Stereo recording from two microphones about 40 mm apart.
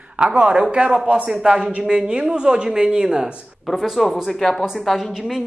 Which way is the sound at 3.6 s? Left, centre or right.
Centre.